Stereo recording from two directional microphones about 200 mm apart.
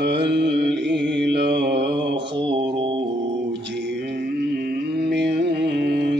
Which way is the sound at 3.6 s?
60° right (ahead or behind).